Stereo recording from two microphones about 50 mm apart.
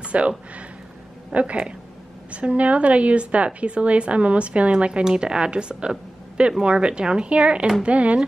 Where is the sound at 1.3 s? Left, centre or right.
Right.